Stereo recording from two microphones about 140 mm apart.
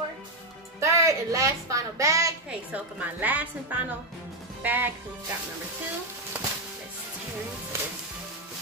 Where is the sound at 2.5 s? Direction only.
10° right (ahead or behind).